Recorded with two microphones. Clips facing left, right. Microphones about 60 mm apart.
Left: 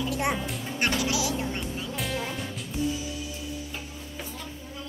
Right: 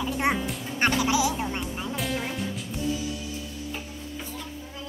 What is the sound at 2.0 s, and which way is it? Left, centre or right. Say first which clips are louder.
Music: right 2 dB; centre.